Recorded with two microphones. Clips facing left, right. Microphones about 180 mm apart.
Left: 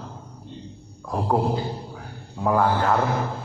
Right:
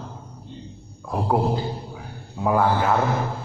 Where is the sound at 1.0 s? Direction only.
5° right (ahead or behind).